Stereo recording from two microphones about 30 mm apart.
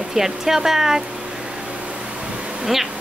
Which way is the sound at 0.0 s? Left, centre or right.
Centre.